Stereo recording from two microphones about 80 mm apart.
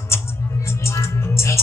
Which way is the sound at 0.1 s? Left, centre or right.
Left.